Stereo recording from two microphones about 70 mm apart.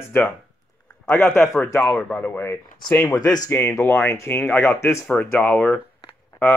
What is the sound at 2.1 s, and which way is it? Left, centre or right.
Speech, left.